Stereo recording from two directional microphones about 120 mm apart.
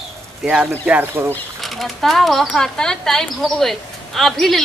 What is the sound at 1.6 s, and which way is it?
Speech, centre (ahead or behind).